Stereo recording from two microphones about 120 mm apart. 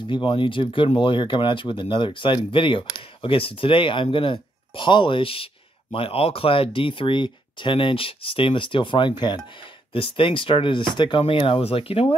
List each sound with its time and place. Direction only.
0.0 s speech: 45° left (ahead or behind)